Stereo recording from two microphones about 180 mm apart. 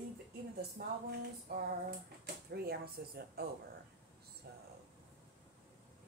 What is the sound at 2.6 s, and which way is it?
Speech, 60° right (ahead or behind).